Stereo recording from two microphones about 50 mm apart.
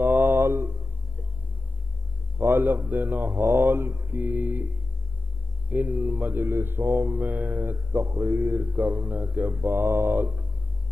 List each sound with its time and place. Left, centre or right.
0.0 s a sound: right
2.3 s mantra: right
5.7 s speech: right
7.2 s mantra: right